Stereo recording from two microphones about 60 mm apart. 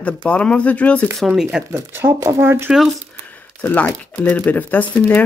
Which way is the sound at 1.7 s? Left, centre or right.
Right.